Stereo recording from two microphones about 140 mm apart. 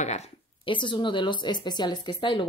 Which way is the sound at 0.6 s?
35° left (ahead or behind).